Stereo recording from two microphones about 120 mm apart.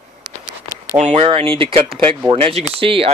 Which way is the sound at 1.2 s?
50° right (ahead or behind).